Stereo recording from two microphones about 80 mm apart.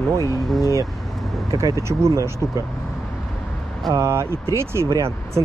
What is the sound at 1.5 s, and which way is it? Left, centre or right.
Speech, right.